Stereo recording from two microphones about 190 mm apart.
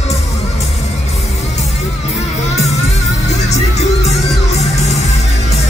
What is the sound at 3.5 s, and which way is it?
Music, 35° left (ahead or behind).